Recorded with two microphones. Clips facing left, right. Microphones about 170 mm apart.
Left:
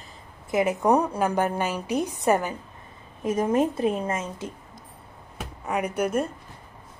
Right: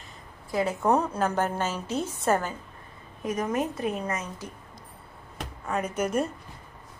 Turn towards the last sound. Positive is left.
turn(degrees=10)  # may be behind; listen again after turning